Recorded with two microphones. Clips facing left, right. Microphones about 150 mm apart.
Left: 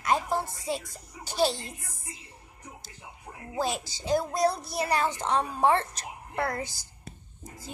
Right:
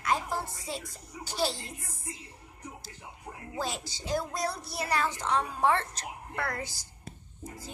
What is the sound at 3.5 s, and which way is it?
A child's voice, 20° left (ahead or behind).